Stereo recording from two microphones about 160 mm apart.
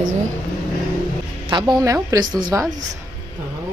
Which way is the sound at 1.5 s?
25° right (ahead or behind).